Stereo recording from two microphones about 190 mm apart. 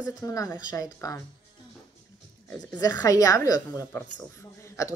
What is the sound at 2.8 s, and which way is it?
A woman's voice, 20° left (ahead or behind).